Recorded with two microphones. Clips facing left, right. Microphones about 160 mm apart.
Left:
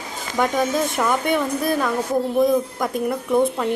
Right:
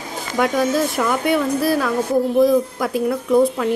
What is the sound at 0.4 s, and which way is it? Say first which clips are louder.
A woman's voice: right 2 dB; 5° right (ahead or behind).